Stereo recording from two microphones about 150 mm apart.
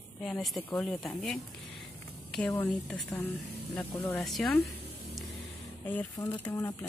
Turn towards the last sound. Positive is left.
turn(degrees=15)  # may be behind; listen again after turning